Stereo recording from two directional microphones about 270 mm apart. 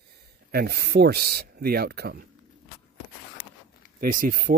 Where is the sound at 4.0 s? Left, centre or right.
Right.